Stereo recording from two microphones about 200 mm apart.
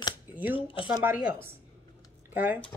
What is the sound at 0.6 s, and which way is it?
Speech, 25° left (ahead or behind).